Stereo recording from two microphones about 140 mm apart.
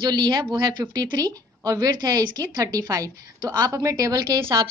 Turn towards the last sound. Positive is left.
turn(degrees=-25)  # may be behind; listen again after turning